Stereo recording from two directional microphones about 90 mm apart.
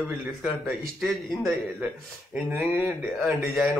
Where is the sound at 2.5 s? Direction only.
15° right (ahead or behind).